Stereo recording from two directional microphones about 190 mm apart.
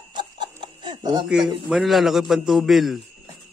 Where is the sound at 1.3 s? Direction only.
Centre (ahead or behind).